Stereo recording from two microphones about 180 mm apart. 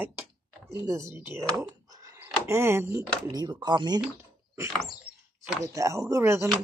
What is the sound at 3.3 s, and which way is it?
Speech, 25° right (ahead or behind).